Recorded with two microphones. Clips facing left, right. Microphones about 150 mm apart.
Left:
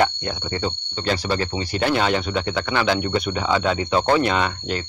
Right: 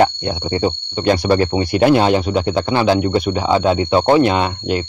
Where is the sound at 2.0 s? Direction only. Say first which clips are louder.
Right 6 dB; 40° right (ahead or behind).